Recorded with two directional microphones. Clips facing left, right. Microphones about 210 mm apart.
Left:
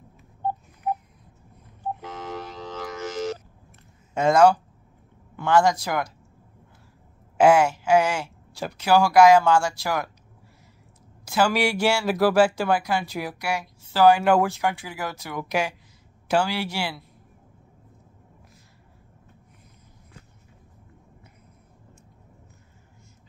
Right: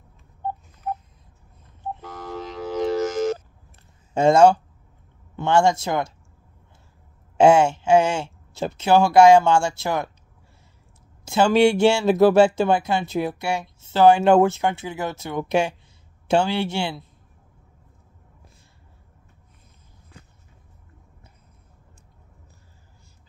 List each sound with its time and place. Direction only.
2.0 s vehicle: 20° left (ahead or behind)
3.0 s a sound: 50° right (ahead or behind)
4.1 s speech: 30° right (ahead or behind)
7.3 s speech: 25° right (ahead or behind)
11.2 s speech: 25° right (ahead or behind)